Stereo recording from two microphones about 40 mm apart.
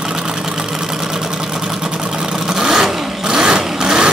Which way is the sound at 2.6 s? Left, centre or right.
Centre.